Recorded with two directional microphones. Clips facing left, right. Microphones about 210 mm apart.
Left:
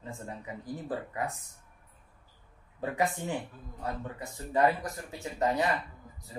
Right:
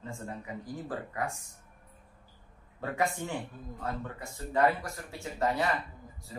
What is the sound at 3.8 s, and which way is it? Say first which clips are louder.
Speech: left 1 dB; 20° left (ahead or behind).